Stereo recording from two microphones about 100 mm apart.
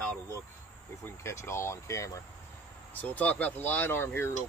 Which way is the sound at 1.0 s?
30° left (ahead or behind).